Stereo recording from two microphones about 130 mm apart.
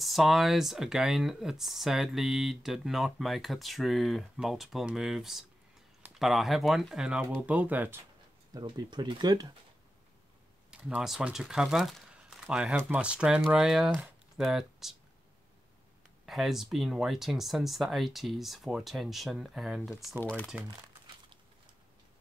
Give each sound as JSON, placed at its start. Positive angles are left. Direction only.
{"t": 0.0, "sound": "speech", "side_deg": 0}
{"t": 8.5, "sound": "speech", "side_deg": -35}
{"t": 10.7, "sound": "speech", "side_deg": -5}
{"t": 16.3, "sound": "speech", "side_deg": 0}